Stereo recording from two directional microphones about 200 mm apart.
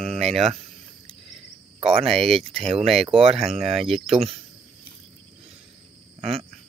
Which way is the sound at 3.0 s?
30° right (ahead or behind).